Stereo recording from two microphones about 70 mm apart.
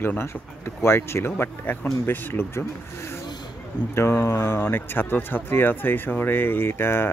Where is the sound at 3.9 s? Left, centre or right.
Left.